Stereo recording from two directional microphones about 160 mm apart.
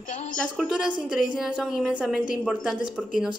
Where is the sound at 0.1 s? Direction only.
50° left (ahead or behind).